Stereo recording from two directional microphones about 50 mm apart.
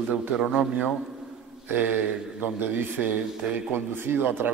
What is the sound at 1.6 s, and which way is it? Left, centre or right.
Speech, right.